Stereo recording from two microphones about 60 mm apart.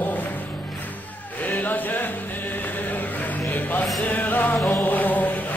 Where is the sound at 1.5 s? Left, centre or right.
Left.